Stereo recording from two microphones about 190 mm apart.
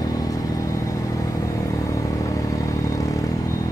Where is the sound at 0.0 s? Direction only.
20° left (ahead or behind).